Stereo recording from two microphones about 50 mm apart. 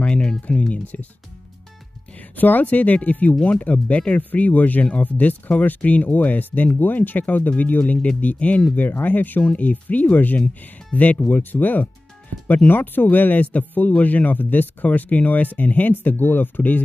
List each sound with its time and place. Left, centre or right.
0.0 s speech: left
2.3 s speech: left